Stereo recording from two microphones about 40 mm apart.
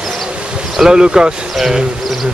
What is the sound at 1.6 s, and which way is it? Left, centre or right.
Speech, centre.